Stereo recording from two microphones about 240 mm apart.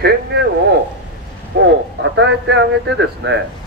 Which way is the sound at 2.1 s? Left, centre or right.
Right.